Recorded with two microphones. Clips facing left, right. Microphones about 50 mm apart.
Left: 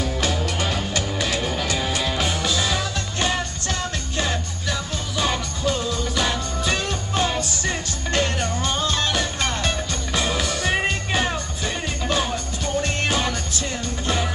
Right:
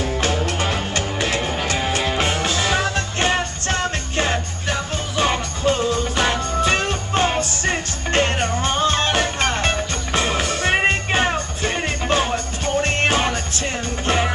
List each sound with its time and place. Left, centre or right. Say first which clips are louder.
0.0 s music: right 3 dB; right
1.4 s music: right 2 dB; right
2.0 s music: right 3 dB; right